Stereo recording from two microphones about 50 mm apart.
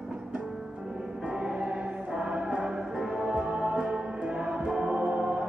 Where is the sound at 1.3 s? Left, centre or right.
Centre.